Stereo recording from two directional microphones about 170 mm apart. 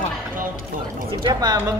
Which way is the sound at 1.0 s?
25° right (ahead or behind).